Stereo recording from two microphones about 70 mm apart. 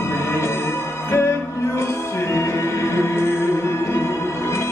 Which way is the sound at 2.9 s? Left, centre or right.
Left.